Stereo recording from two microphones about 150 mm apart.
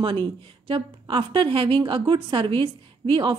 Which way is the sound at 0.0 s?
35° right (ahead or behind).